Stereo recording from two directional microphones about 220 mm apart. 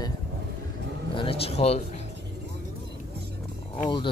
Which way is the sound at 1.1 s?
25° left (ahead or behind).